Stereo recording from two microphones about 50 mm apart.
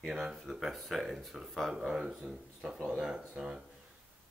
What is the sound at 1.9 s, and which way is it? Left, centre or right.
Speech, centre.